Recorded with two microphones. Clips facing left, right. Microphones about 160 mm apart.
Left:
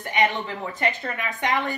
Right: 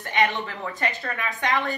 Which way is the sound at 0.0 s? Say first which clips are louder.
Left 1 dB; 15° left (ahead or behind).